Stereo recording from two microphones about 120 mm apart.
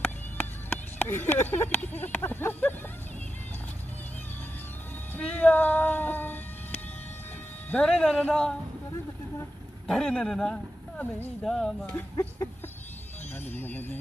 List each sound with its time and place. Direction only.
0.0 s speech: 15° left (ahead or behind)
5.1 s speech: 10° left (ahead or behind)
9.8 s speech: 5° left (ahead or behind)
13.5 s speech: 15° left (ahead or behind)